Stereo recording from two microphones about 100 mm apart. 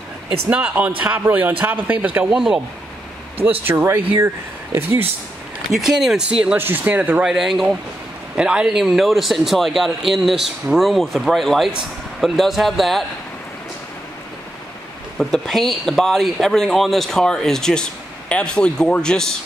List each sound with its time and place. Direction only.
0.5 s speech: 15° right (ahead or behind)
3.6 s speech: 25° right (ahead or behind)
5.7 s speech: 5° right (ahead or behind)
6.4 s speech: 20° right (ahead or behind)
7.2 s speech: 5° right (ahead or behind)
15.1 s a man's voice: 5° left (ahead or behind)